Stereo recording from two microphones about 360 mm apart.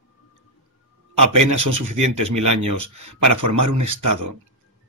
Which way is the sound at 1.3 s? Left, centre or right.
Right.